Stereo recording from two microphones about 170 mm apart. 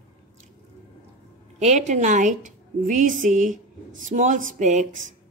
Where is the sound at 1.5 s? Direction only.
45° right (ahead or behind).